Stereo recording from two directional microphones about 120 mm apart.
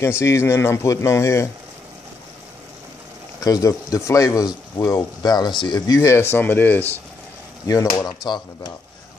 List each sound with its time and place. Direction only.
0.2 s speech: 25° left (ahead or behind)
3.3 s speech: 30° left (ahead or behind)
7.6 s speech: 35° left (ahead or behind)